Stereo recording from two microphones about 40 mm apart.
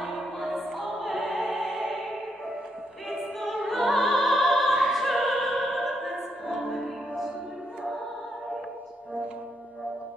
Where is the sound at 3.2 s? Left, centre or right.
Centre.